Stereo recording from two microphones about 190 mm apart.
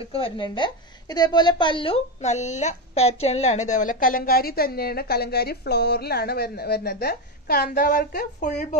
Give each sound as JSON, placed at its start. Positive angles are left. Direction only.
{"t": 0.1, "sound": "a woman's voice", "side_deg": 25}